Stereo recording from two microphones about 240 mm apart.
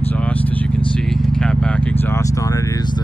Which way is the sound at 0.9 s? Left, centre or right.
Centre.